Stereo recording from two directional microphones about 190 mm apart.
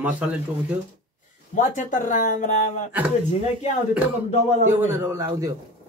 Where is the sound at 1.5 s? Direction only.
40° left (ahead or behind).